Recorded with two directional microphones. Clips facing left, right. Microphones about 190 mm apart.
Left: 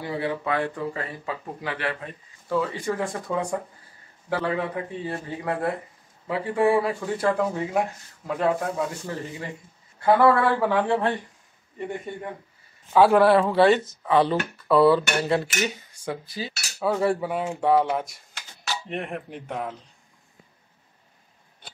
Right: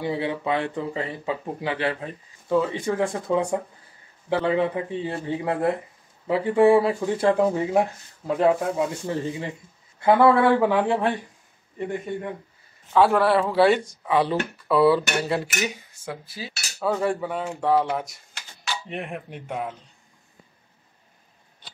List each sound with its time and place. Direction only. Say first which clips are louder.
0.0 s speech: right 2 dB; 20° right (ahead or behind)
12.9 s speech: left 2 dB; centre (ahead or behind)